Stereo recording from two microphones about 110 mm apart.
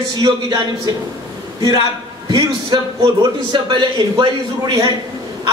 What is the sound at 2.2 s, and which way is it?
A man's voice, 40° right (ahead or behind).